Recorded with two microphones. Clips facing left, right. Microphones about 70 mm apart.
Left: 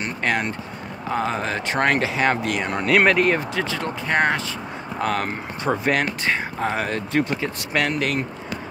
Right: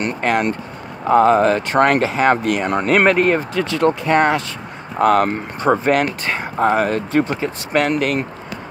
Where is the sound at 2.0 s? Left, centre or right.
Right.